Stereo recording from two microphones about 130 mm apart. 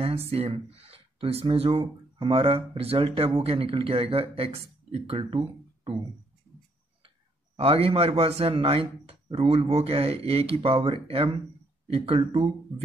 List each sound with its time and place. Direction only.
0.3 s speech: 50° right (ahead or behind)
7.5 s speech: 50° right (ahead or behind)